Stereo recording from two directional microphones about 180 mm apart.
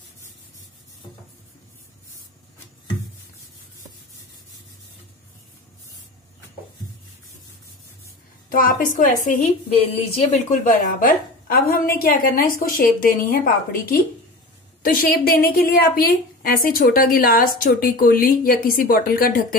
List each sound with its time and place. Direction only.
8.5 s a woman's voice: 50° left (ahead or behind)